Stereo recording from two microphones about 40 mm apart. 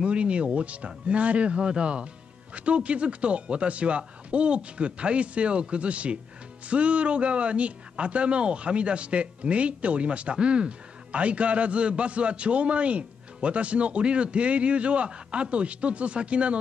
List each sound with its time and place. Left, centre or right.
0.0 s a man's voice: right